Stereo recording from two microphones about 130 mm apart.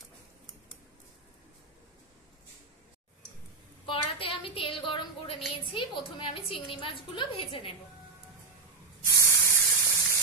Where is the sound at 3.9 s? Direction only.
45° left (ahead or behind).